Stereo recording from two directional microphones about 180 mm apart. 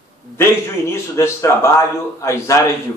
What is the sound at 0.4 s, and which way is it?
A man's voice, 15° left (ahead or behind).